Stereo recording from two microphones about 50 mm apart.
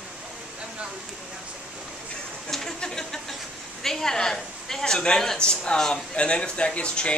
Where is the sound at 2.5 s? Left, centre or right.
Centre.